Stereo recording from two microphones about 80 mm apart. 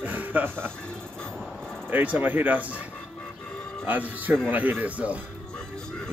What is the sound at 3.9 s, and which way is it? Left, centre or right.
Speech, centre.